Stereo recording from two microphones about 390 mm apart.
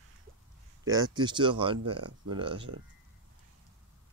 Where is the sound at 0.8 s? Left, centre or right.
Centre.